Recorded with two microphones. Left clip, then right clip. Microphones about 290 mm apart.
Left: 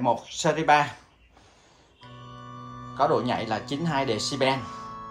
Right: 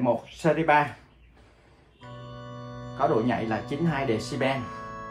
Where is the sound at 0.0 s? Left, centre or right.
Centre.